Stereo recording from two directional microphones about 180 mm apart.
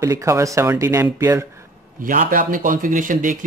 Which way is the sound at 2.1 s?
50° right (ahead or behind).